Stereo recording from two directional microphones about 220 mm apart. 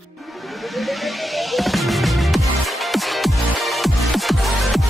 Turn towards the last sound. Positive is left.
turn(degrees=0)  # may be behind; listen again after turning